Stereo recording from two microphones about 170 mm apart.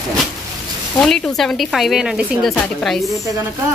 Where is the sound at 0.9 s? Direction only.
5° left (ahead or behind).